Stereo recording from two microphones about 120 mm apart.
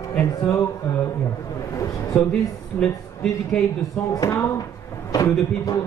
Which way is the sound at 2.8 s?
15° left (ahead or behind).